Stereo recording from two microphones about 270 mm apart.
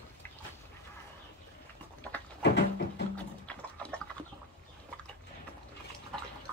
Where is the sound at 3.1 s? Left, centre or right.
Centre.